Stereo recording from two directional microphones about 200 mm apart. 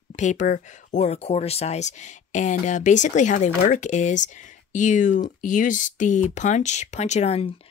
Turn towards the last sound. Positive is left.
turn(degrees=30)  # may be behind; listen again after turning